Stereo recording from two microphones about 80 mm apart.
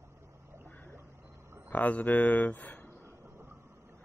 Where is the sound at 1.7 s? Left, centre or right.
Left.